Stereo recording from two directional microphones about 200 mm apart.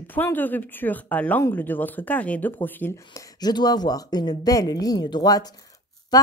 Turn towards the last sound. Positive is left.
turn(degrees=20)  # may be behind; listen again after turning